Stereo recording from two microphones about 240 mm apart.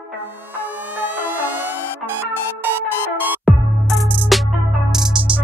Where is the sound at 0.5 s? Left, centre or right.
Centre.